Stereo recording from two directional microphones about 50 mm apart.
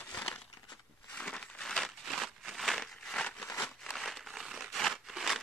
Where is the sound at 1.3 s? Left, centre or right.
Centre.